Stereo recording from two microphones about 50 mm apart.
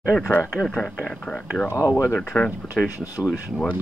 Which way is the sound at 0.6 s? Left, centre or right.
Centre.